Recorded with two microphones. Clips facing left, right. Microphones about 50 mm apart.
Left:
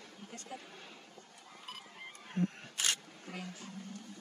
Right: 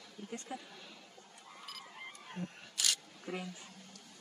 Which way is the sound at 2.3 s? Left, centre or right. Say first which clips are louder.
Left 10 dB; left.